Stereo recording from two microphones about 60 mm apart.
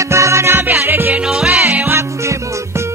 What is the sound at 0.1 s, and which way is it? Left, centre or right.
Music, right.